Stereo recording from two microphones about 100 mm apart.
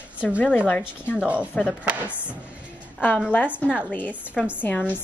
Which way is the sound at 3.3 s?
20° left (ahead or behind).